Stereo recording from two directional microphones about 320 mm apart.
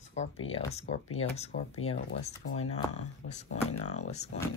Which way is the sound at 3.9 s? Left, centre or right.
Left.